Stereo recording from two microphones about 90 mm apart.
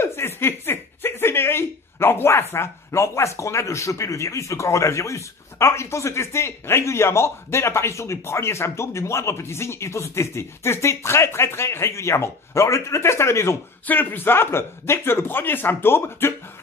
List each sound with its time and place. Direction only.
0.0 s a man's voice: 25° left (ahead or behind)